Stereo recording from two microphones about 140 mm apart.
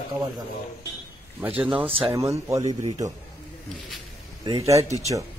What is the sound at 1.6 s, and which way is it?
Speech, 10° right (ahead or behind).